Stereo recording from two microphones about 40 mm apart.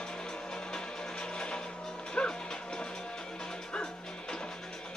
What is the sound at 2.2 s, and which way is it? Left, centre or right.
Music, left.